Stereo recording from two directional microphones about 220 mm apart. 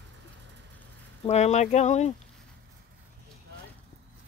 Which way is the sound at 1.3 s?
30° left (ahead or behind).